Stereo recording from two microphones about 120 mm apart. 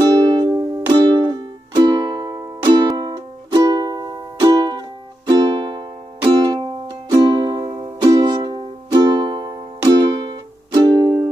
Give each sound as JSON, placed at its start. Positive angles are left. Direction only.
{"t": 0.0, "sound": "music", "side_deg": -40}